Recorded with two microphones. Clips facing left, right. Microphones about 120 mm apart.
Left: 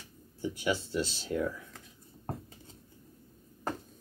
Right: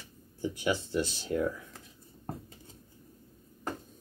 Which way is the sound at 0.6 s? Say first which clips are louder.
Right 1 dB; 20° right (ahead or behind).